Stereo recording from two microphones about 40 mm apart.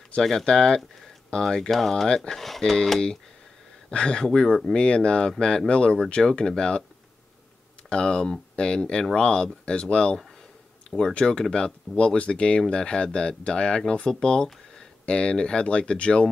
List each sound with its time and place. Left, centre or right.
0.2 s speech: centre
2.0 s speech: centre
2.3 s speech: centre
3.9 s speech: left
7.9 s speech: left
11.1 s speech: left